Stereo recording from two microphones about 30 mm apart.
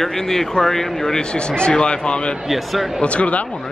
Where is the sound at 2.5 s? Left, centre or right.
Centre.